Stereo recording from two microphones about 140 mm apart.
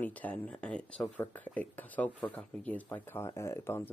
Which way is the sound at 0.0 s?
10° left (ahead or behind).